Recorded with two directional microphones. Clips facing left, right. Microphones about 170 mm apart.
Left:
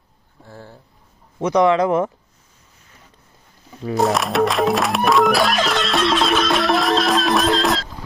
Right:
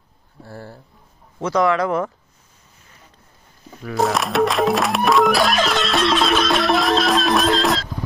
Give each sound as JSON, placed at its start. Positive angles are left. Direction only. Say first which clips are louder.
{"t": 0.5, "sound": "speech", "louder": "right 3 dB", "side_deg": -5}
{"t": 1.4, "sound": "speech", "louder": "left 3 dB", "side_deg": 20}
{"t": 3.9, "sound": "music", "louder": "left 1 dB", "side_deg": 0}